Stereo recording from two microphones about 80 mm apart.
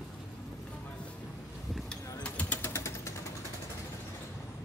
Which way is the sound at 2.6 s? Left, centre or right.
Left.